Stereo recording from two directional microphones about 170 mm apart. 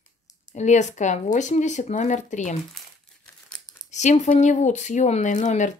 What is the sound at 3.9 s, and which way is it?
Speech, 45° left (ahead or behind).